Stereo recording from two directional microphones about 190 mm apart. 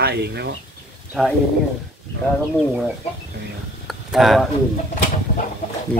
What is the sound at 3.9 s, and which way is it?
Speech, centre (ahead or behind).